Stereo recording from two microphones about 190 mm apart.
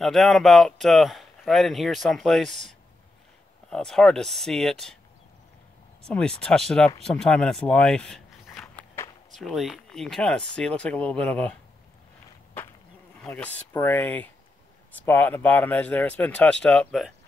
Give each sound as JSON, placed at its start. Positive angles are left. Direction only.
{"t": 0.0, "sound": "speech", "side_deg": 0}
{"t": 3.7, "sound": "speech", "side_deg": 0}
{"t": 6.0, "sound": "speech", "side_deg": 5}
{"t": 9.3, "sound": "speech", "side_deg": 0}
{"t": 13.2, "sound": "speech", "side_deg": 10}